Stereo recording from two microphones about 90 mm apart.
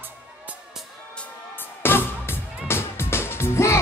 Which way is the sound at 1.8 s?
25° left (ahead or behind).